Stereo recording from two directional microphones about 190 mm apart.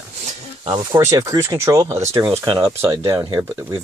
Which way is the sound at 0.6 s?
25° right (ahead or behind).